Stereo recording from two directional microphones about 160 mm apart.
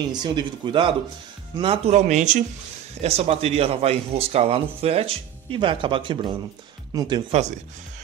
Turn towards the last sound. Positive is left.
turn(degrees=-30)  # may be behind; listen again after turning